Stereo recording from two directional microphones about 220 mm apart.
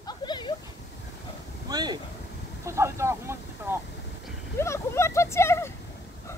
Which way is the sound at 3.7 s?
10° right (ahead or behind).